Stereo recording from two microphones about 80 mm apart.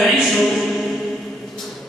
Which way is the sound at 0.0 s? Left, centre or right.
Centre.